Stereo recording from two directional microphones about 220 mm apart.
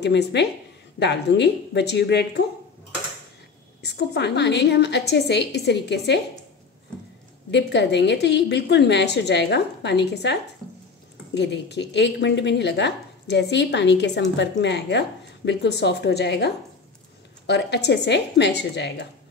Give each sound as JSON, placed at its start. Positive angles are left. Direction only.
{"t": 0.0, "sound": "a woman's voice", "side_deg": 50}
{"t": 3.8, "sound": "a woman's voice", "side_deg": 50}
{"t": 7.5, "sound": "a woman's voice", "side_deg": 50}